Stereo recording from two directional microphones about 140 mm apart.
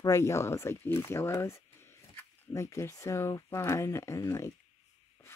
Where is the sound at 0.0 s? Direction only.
20° left (ahead or behind).